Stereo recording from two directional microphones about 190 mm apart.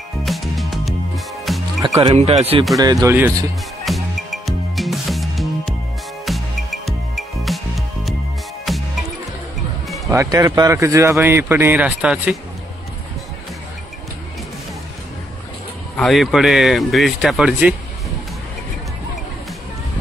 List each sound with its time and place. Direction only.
0.2 s music: centre (ahead or behind)
2.1 s speech: 35° right (ahead or behind)
2.8 s speech: 20° right (ahead or behind)
3.8 s music: centre (ahead or behind)
10.1 s speech: 20° right (ahead or behind)
16.0 s speech: centre (ahead or behind)